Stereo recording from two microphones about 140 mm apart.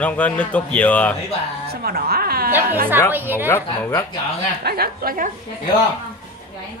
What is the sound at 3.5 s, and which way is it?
Speech, 20° left (ahead or behind).